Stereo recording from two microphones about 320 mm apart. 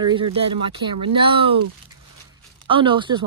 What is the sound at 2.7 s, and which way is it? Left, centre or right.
Speech, centre.